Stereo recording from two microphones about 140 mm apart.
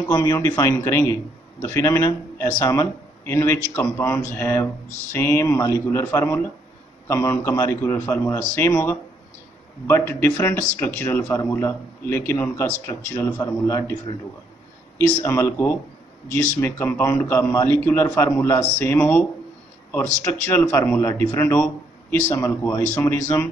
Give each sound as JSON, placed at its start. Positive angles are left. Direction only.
{"t": 0.1, "sound": "speech", "side_deg": 25}
{"t": 15.0, "sound": "speech", "side_deg": 10}
{"t": 16.5, "sound": "speech", "side_deg": 15}